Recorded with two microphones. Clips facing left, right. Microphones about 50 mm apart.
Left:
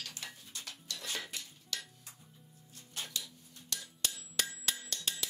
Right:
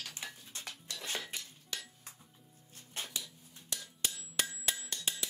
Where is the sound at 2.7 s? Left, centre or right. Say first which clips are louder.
Right 1 dB; right.